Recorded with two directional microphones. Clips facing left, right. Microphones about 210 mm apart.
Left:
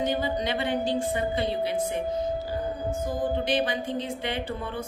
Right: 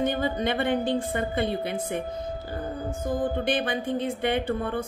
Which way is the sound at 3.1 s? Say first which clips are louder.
Right 2 dB; 55° right (ahead or behind).